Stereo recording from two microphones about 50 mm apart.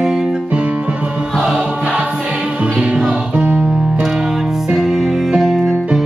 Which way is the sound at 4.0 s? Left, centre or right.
Centre.